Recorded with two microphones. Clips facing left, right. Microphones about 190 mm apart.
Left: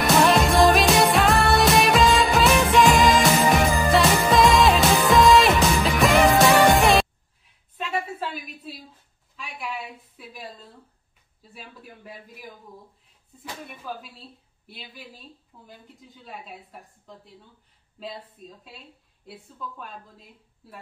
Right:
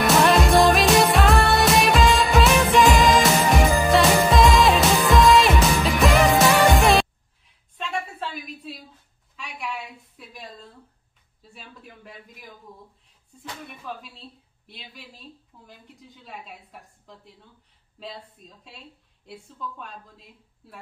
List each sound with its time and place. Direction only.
0.0 s music: centre (ahead or behind)
7.7 s a sound: 5° left (ahead or behind)
13.4 s speech: 5° left (ahead or behind)